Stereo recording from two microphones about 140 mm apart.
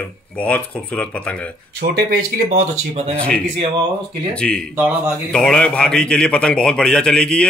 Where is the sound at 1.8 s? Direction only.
90° right.